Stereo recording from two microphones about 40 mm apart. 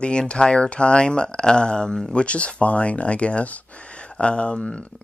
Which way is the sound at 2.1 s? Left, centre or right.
Left.